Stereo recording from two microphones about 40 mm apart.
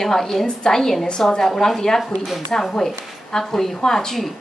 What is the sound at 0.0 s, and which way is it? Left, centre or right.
A woman's voice, centre.